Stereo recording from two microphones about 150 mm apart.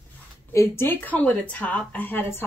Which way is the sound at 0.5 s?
15° left (ahead or behind).